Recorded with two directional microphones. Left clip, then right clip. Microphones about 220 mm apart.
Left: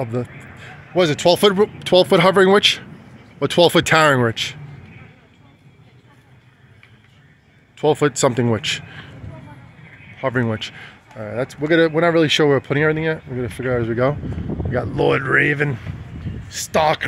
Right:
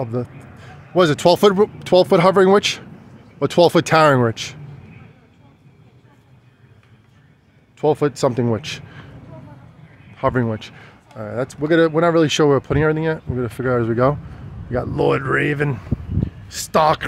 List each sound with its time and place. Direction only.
0.0 s a sound: 5° right (ahead or behind)
0.9 s speech: 25° right (ahead or behind)
1.4 s speech: 10° right (ahead or behind)
7.7 s speech: 5° right (ahead or behind)
10.3 s speech: centre (ahead or behind)
11.1 s speech: 10° right (ahead or behind)
14.7 s speech: 10° right (ahead or behind)
16.4 s speech: 25° right (ahead or behind)